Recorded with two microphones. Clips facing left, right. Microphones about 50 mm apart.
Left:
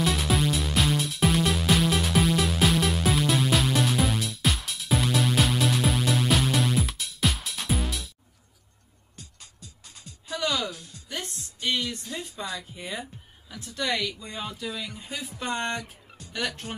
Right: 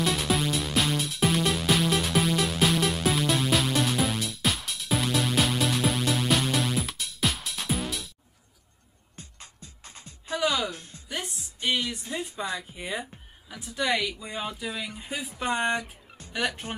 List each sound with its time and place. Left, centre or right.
0.0 s music: centre
9.1 s music: right
10.3 s music: centre
10.7 s music: right
11.1 s speech: centre
16.2 s music: right